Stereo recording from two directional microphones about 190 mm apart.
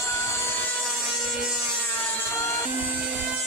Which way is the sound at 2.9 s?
5° right (ahead or behind).